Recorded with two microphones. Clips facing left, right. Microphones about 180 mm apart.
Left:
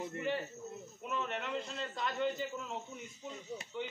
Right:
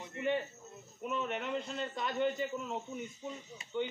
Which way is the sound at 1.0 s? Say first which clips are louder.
Right 3 dB; 5° right (ahead or behind).